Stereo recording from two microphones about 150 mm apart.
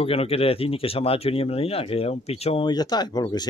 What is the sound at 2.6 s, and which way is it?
Speech, 30° left (ahead or behind).